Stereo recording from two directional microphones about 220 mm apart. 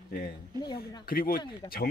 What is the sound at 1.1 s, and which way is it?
Speech, 40° left (ahead or behind).